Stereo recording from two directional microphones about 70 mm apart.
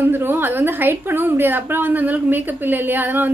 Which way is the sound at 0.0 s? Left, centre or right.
Right.